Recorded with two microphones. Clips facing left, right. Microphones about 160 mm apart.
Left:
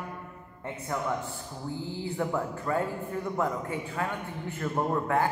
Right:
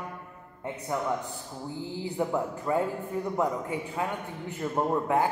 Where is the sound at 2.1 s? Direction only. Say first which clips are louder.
Right 2 dB; 15° right (ahead or behind).